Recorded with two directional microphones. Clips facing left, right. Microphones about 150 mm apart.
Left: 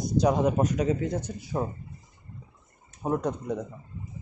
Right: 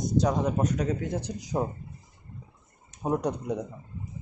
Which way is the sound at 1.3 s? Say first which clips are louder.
Right 1 dB; 15° right (ahead or behind).